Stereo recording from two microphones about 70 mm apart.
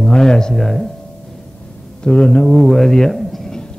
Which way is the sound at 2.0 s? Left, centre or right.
Centre.